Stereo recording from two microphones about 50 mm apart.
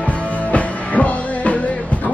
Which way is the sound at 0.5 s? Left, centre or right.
Left.